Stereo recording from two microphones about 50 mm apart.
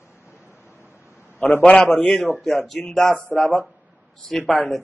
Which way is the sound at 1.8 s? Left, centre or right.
Centre.